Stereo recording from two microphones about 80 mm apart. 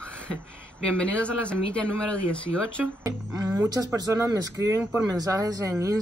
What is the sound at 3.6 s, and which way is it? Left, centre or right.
Speech, right.